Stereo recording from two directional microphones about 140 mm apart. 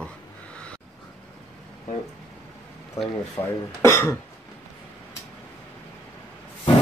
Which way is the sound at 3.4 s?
20° left (ahead or behind).